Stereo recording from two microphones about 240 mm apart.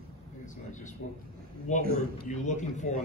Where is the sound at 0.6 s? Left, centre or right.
Left.